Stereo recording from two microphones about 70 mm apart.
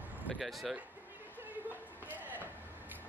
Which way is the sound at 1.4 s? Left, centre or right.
Right.